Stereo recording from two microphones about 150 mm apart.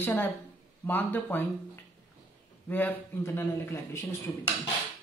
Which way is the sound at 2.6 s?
10° left (ahead or behind).